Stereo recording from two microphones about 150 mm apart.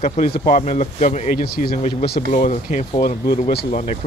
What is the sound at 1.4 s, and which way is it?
Speech, 70° left (ahead or behind).